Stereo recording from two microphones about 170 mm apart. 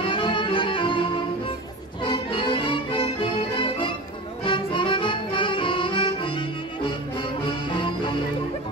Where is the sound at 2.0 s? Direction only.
30° left (ahead or behind).